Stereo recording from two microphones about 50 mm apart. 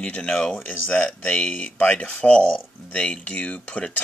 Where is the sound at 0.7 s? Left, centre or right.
Left.